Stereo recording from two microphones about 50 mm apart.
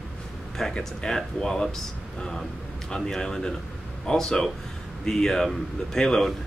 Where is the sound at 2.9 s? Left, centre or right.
Centre.